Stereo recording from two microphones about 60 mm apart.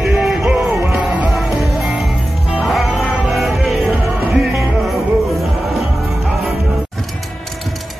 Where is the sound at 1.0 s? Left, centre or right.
Right.